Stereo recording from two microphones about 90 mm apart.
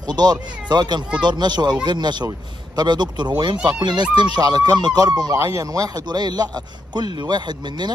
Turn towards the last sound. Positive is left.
turn(degrees=-55)  # may be behind; listen again after turning